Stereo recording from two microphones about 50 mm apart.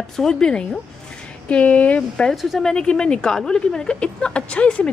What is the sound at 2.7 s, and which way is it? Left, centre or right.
A woman's voice, centre.